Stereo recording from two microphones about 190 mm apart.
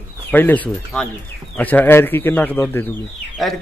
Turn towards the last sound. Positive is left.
turn(degrees=0)  # may be behind; listen again after turning